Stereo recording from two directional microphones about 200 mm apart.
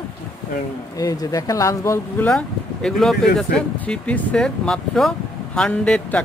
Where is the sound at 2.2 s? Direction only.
5° left (ahead or behind).